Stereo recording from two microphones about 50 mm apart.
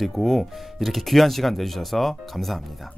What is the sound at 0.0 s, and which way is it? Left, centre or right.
Speech, centre.